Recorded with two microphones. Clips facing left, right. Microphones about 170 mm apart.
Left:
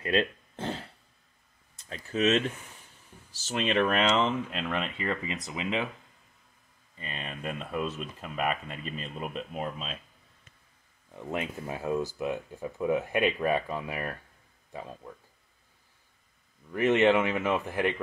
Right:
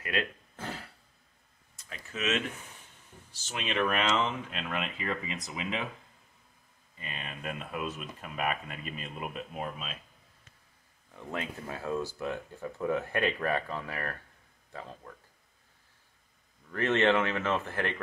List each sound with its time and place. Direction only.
0.0 s a sound: 25° left (ahead or behind)
1.9 s speech: 35° left (ahead or behind)
7.0 s speech: 35° left (ahead or behind)
11.1 s speech: 15° left (ahead or behind)
16.7 s speech: 15° left (ahead or behind)